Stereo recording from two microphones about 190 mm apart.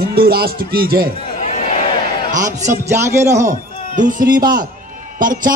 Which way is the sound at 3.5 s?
40° right (ahead or behind).